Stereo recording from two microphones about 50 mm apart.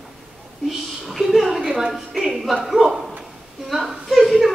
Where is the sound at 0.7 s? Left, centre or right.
Centre.